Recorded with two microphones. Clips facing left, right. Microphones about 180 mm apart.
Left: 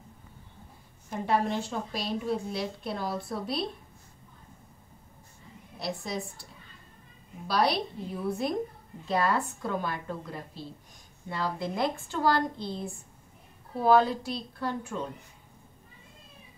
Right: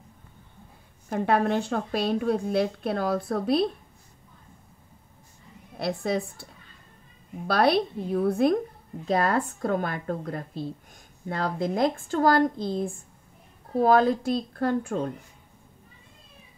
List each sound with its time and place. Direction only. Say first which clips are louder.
1.1 s a woman's voice: right 5 dB; 60° right (ahead or behind)
5.8 s a woman's voice: right 7 dB; 55° right (ahead or behind)
7.4 s a woman's voice: right 5 dB; 55° right (ahead or behind)